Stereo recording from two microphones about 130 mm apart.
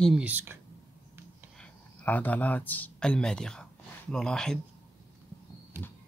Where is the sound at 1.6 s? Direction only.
10° left (ahead or behind).